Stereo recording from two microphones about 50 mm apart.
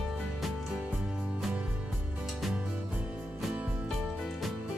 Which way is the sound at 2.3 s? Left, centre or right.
Centre.